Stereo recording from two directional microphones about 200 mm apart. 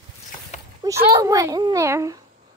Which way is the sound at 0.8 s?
15° right (ahead or behind).